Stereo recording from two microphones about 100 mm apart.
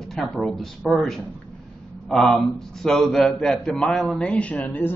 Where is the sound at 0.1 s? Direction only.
5° left (ahead or behind).